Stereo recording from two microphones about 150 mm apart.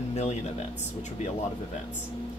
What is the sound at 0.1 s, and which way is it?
Speech, 45° left (ahead or behind).